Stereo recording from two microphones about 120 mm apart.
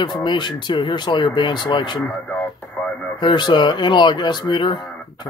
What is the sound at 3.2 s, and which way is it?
Speech, 40° left (ahead or behind).